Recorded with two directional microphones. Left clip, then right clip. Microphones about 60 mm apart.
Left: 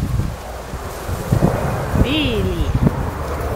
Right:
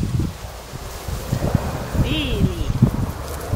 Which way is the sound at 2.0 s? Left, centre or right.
Centre.